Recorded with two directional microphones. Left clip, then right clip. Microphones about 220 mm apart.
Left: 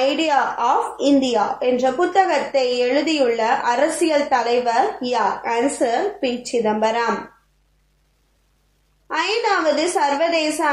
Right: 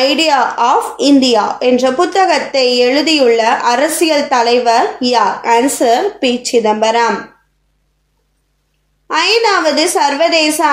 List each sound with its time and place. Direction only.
0.0 s a woman's voice: 40° right (ahead or behind)
9.0 s a woman's voice: 40° right (ahead or behind)